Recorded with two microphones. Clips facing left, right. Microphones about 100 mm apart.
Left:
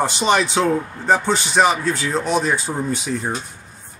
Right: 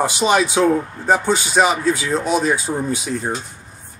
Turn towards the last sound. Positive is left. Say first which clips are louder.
# right 1 dB
turn(degrees=-5)  # may be behind; listen again after turning